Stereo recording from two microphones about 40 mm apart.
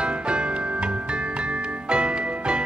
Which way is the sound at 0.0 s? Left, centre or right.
Right.